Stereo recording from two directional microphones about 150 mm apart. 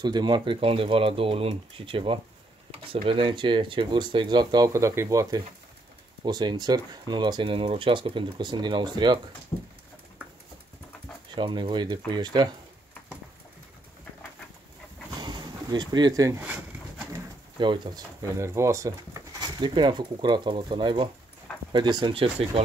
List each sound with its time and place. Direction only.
0.0 s speech: 30° right (ahead or behind)
9.5 s dog: 25° left (ahead or behind)
11.3 s speech: 35° right (ahead or behind)
15.1 s a sound: 30° right (ahead or behind)
17.1 s pigeon: 30° right (ahead or behind)
18.4 s speech: 20° right (ahead or behind); by 22.6 s 35° right (ahead or behind)